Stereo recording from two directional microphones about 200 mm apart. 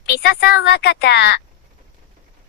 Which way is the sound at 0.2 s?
55° left (ahead or behind).